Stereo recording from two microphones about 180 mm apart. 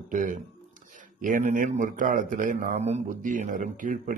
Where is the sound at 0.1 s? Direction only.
45° right (ahead or behind).